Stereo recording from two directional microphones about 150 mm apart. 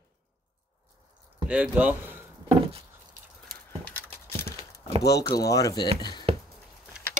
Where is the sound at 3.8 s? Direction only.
10° left (ahead or behind).